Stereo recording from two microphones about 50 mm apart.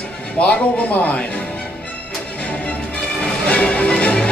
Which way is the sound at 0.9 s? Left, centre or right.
Left.